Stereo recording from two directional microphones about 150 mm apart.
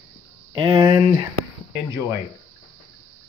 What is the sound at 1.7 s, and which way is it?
Speech, 20° right (ahead or behind).